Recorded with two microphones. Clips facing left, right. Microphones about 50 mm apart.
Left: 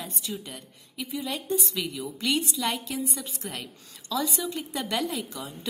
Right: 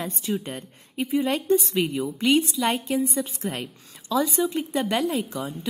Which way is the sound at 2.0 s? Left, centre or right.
Right.